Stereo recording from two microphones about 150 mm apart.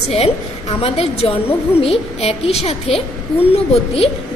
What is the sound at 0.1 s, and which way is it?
A woman's voice, 40° left (ahead or behind).